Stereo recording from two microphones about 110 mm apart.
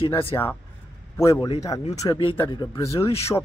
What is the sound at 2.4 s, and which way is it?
Speech, 40° left (ahead or behind).